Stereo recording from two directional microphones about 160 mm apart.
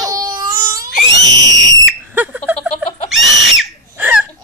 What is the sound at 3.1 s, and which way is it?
Screaming, centre (ahead or behind).